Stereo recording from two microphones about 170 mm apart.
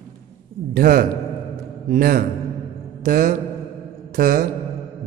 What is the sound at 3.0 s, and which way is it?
Mantra, 50° right (ahead or behind).